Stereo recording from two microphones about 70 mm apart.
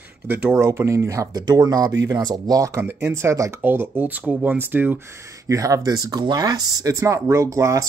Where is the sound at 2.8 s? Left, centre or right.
Right.